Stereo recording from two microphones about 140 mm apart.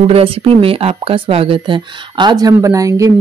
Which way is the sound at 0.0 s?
45° right (ahead or behind).